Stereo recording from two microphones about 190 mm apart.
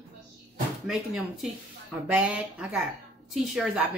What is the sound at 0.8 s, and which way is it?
A woman's voice, centre (ahead or behind).